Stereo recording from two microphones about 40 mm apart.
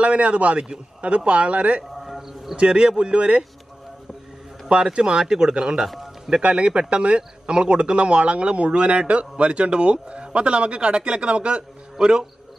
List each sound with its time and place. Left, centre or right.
0.0 s speech: right
1.9 s a sound: centre
2.5 s speech: right
4.9 s speech: right
5.8 s music: centre
6.3 s speech: right